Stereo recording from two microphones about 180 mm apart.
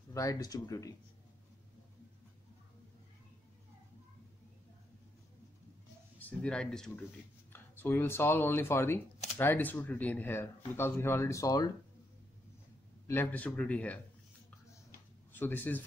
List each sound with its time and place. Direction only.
0.1 s speech: 20° left (ahead or behind)
6.1 s speech: 10° left (ahead or behind)
13.0 s speech: 10° left (ahead or behind)
15.3 s speech: 10° left (ahead or behind)